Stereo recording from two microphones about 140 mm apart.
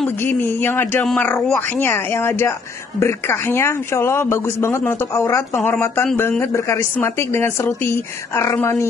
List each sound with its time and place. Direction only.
0.0 s a man's voice: 15° left (ahead or behind)